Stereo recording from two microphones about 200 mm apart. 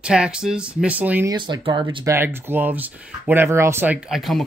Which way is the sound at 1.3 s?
25° right (ahead or behind).